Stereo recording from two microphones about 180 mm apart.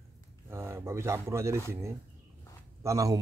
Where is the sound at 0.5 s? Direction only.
15° right (ahead or behind).